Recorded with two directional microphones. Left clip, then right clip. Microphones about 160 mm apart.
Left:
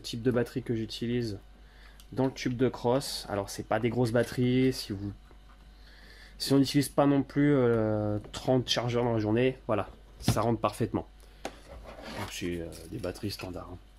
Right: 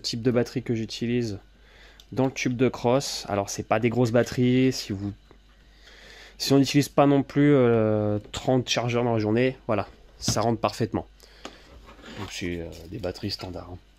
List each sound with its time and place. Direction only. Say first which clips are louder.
0.0 s speech: right 5 dB; 50° right (ahead or behind)
6.1 s speech: right 5 dB; 55° right (ahead or behind)
10.3 s speech: right 4 dB; 35° right (ahead or behind)
12.3 s speech: right 6 dB; 40° right (ahead or behind)